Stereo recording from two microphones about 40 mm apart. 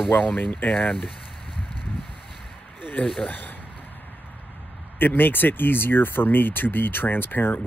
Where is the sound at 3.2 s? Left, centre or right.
Left.